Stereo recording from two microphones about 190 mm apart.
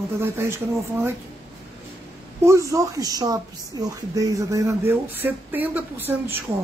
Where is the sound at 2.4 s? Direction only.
15° right (ahead or behind).